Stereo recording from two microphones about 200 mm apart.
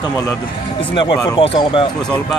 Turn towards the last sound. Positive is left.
turn(degrees=25)  # may be behind; listen again after turning